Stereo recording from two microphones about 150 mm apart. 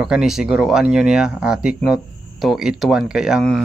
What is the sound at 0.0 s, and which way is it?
Speech, 5° right (ahead or behind).